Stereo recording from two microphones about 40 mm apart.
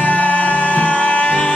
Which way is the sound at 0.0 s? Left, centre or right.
Left.